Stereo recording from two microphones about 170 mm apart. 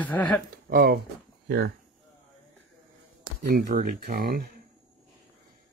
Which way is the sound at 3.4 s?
55° right (ahead or behind).